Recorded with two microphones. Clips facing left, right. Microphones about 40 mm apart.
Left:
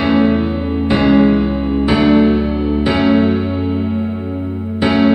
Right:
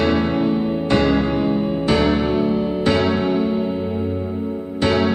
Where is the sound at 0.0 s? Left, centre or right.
Centre.